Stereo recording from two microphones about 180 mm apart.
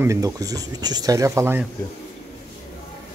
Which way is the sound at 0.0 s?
15° right (ahead or behind).